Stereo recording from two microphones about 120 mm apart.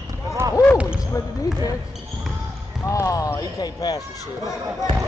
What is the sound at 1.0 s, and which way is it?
Basketball bounce, 30° left (ahead or behind).